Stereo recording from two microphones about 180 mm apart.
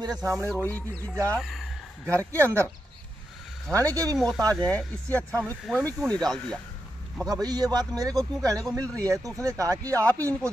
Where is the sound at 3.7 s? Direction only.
20° right (ahead or behind).